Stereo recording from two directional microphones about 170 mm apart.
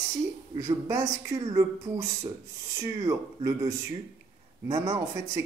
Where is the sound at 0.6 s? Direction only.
20° right (ahead or behind).